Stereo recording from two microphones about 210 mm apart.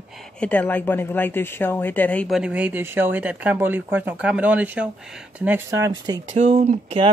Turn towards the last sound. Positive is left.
turn(degrees=-30)  # may be behind; listen again after turning